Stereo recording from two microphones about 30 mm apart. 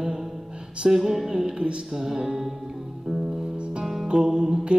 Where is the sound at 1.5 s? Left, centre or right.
Right.